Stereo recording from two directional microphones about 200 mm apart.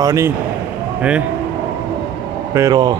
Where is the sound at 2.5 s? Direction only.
20° right (ahead or behind).